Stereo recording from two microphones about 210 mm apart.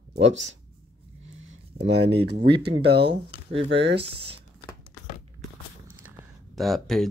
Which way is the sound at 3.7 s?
55° right (ahead or behind).